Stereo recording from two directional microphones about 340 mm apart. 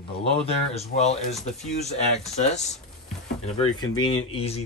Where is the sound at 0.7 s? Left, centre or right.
Centre.